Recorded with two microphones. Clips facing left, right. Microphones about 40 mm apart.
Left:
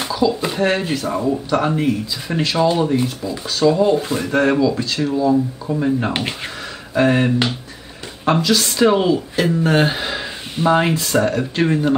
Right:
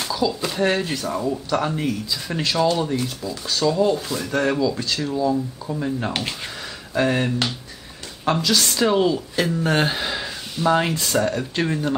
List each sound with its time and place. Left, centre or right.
0.3 s speech: centre
8.4 s speech: centre